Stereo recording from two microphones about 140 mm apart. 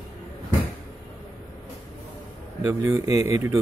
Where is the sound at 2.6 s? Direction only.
25° right (ahead or behind).